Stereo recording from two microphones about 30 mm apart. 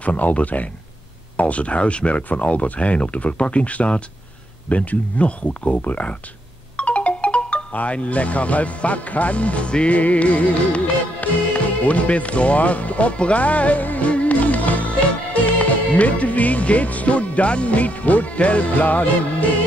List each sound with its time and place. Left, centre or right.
0.0 s speech: left
5.8 s speech: left
6.8 s music: left
7.7 s speech: left
9.8 s speech: left
13.8 s music: left